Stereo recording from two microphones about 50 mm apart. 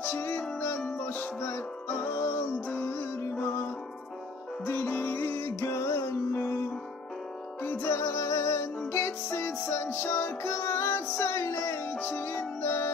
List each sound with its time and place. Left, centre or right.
0.0 s music: left
2.1 s music: left
2.4 s music: left
4.6 s music: left
7.6 s music: left
7.9 s music: left